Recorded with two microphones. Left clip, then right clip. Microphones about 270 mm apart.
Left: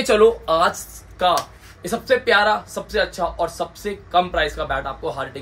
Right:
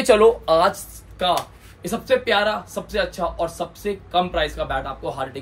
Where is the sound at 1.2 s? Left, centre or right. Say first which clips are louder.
Left 3 dB; centre.